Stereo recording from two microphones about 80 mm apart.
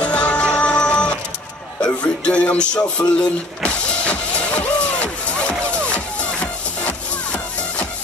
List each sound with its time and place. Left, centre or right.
0.0 s music: centre